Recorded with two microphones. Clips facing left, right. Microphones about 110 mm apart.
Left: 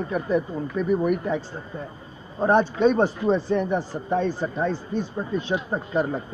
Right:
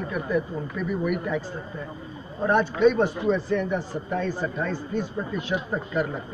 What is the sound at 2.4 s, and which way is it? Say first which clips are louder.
A man's voice: left 1 dB; 30° left (ahead or behind).